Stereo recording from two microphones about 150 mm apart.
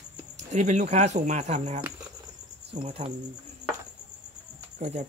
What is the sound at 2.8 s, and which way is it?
Speech, 40° right (ahead or behind).